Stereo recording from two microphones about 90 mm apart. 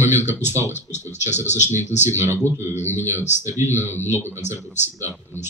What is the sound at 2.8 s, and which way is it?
Speech, 25° left (ahead or behind).